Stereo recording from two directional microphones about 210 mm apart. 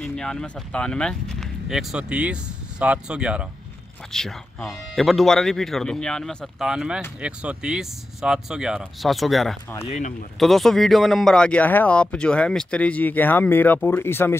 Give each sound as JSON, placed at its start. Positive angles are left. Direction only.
{"t": 0.0, "sound": "speech", "side_deg": 5}
{"t": 9.8, "sound": "speech", "side_deg": 35}
{"t": 10.4, "sound": "speech", "side_deg": 0}